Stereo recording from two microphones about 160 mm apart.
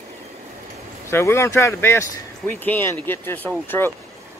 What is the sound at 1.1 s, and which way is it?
Speech, 15° left (ahead or behind).